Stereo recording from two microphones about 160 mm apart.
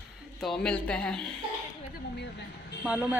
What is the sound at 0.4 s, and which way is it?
Speech, 5° left (ahead or behind).